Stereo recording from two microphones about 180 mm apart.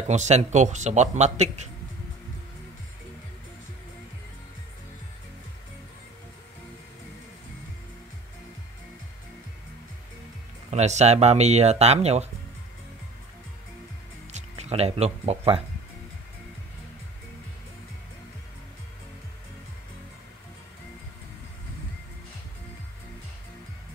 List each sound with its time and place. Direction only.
0.1 s speech: 40° right (ahead or behind)
10.7 s speech: 40° right (ahead or behind)
14.3 s speech: 35° right (ahead or behind)